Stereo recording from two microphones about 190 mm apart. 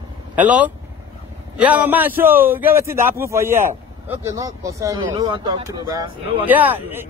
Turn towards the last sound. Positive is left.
turn(degrees=-10)  # may be behind; listen again after turning